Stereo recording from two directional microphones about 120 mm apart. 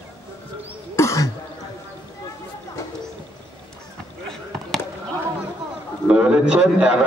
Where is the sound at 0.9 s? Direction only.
25° left (ahead or behind).